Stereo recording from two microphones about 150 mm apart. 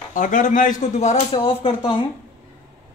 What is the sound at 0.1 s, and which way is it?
Speech, 60° left (ahead or behind).